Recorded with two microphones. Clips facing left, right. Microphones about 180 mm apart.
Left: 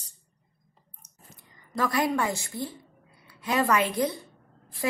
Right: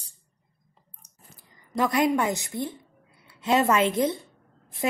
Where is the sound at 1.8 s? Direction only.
20° right (ahead or behind).